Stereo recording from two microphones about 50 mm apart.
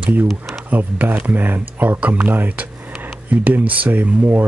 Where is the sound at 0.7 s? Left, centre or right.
Right.